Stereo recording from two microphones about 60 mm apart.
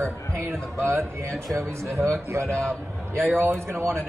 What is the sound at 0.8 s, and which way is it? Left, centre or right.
Speech, right.